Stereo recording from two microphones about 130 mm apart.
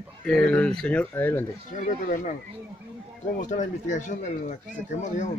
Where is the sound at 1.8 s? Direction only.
75° left (ahead or behind).